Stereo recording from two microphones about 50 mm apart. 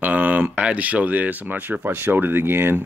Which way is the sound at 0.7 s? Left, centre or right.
Right.